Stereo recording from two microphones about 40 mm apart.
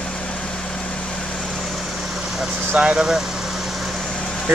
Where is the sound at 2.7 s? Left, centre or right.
Right.